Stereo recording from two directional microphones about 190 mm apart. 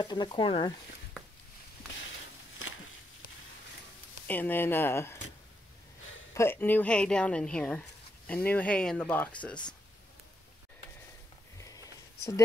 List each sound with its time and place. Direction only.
0.0 s speech: 20° left (ahead or behind)
4.3 s a woman's voice: 10° left (ahead or behind)
6.3 s a woman's voice: 10° left (ahead or behind)
11.6 s a sound: 15° left (ahead or behind)